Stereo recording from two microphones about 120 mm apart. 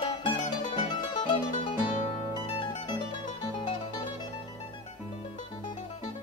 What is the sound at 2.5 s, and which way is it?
Mandolin, 45° left (ahead or behind).